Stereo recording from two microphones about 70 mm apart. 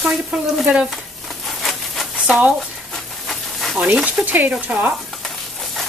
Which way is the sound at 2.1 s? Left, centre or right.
Centre.